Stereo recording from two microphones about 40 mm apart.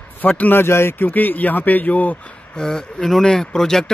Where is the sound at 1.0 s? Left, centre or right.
Left.